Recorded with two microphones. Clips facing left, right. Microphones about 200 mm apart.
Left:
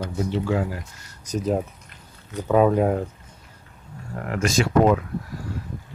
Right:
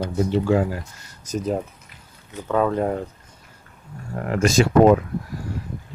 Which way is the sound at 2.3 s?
15° left (ahead or behind).